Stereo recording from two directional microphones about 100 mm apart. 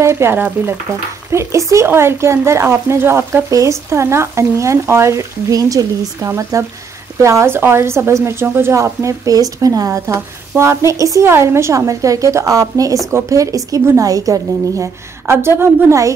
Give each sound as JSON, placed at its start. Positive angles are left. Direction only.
{"t": 0.0, "sound": "a woman's voice", "side_deg": -25}
{"t": 15.2, "sound": "a woman's voice", "side_deg": -25}